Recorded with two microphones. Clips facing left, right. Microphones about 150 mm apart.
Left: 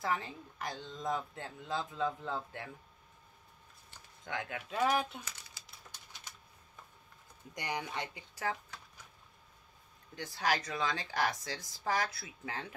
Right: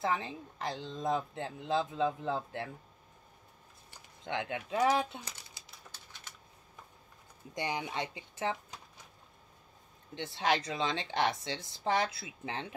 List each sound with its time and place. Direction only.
0.0 s speech: 20° right (ahead or behind)
4.2 s speech: 25° right (ahead or behind)
7.5 s speech: 20° right (ahead or behind)
10.1 s speech: 25° right (ahead or behind)